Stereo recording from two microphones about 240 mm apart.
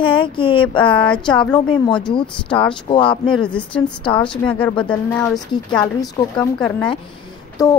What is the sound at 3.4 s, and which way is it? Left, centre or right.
Speech, centre.